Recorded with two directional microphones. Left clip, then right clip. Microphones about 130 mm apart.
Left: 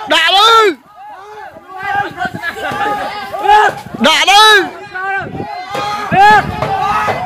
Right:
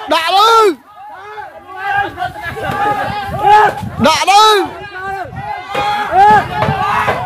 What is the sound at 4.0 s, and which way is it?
Speech, 15° right (ahead or behind).